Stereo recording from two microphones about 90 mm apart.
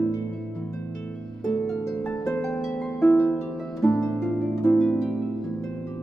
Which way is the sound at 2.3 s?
10° left (ahead or behind).